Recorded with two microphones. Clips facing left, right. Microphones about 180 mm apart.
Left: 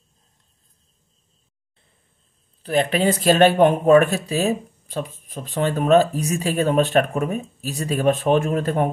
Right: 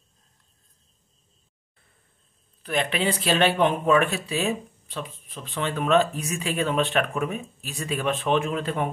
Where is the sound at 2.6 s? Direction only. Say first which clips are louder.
Left 6 dB; 40° left (ahead or behind).